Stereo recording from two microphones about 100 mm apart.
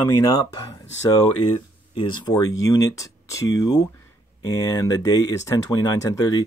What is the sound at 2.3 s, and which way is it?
Speech, 35° left (ahead or behind).